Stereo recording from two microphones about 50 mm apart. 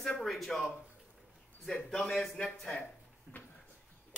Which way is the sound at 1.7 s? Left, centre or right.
Centre.